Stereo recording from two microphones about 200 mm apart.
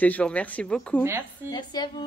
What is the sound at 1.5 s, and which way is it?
Speech, 20° left (ahead or behind).